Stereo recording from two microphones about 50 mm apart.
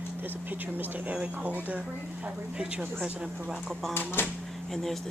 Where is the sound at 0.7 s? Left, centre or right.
Right.